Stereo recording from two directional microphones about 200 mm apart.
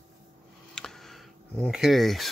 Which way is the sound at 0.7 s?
Centre (ahead or behind).